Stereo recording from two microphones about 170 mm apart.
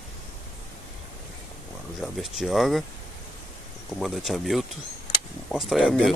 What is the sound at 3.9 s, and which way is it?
Speech, centre (ahead or behind).